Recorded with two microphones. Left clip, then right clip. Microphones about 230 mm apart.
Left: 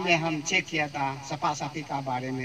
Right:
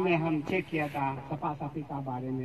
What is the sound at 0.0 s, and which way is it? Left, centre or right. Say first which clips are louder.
A man's voice: left 3 dB; left.